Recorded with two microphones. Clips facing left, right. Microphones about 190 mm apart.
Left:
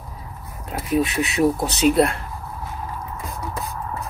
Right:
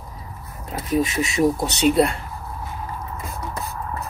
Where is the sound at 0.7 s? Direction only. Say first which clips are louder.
Left 1 dB; centre (ahead or behind).